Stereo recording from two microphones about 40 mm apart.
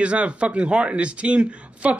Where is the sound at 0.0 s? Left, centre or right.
Right.